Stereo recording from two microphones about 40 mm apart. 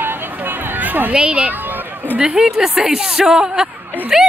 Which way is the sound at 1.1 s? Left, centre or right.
Right.